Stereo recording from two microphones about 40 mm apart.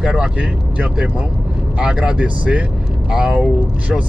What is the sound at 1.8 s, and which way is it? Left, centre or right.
Speech, right.